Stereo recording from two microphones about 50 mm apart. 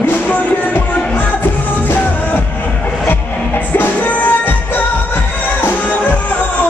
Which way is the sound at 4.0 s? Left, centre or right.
Left.